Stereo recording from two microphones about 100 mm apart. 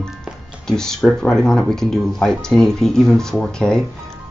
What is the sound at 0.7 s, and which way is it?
Speech, 5° left (ahead or behind).